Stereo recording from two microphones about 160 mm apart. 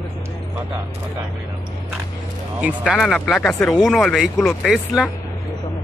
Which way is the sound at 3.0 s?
5° left (ahead or behind).